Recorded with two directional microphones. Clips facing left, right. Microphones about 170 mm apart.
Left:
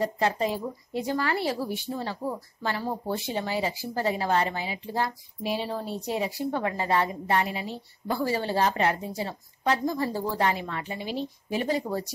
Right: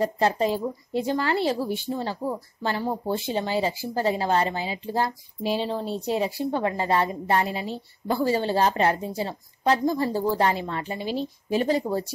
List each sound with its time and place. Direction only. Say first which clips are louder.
0.2 s speech: right 3 dB; 30° right (ahead or behind)